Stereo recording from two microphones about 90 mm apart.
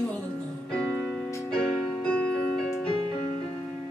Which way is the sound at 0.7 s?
10° left (ahead or behind).